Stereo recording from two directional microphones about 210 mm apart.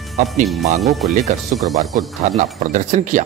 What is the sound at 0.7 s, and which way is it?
Speech, centre (ahead or behind).